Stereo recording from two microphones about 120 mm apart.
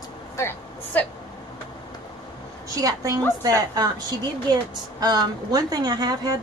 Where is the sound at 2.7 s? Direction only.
30° right (ahead or behind).